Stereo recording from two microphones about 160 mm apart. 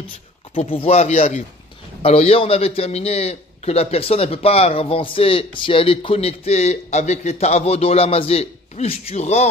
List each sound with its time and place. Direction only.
0.6 s a man's voice: 35° left (ahead or behind)